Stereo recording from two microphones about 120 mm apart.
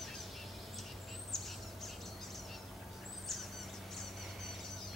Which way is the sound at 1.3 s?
Centre (ahead or behind).